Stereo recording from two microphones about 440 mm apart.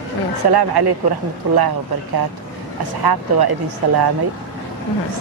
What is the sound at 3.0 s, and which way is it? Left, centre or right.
Speech, right.